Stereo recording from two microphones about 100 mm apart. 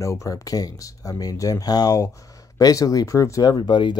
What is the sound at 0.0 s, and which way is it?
Speech, 30° left (ahead or behind).